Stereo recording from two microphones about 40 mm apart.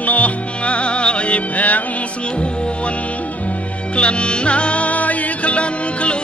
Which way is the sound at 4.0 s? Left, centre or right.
Left.